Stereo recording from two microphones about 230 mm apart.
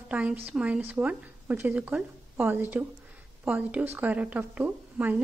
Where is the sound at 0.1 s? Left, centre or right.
Centre.